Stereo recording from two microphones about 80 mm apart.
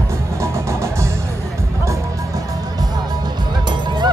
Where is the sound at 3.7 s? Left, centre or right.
Right.